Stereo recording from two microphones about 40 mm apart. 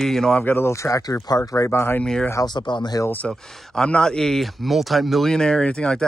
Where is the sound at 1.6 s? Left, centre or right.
Left.